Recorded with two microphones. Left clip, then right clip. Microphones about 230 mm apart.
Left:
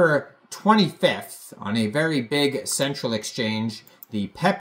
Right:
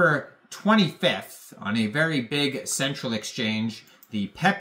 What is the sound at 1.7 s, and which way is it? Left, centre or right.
Speech, centre.